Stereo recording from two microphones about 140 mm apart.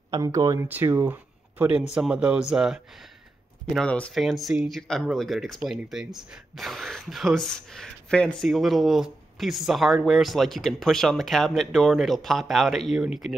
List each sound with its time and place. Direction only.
0.1 s speech: 25° right (ahead or behind); by 3.1 s 5° right (ahead or behind)
3.6 s speech: 5° left (ahead or behind)